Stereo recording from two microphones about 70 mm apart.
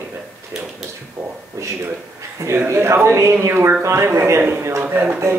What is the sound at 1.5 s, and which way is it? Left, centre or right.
Speech, right.